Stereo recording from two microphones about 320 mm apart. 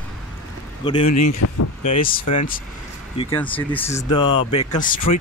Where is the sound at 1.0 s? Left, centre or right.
Left.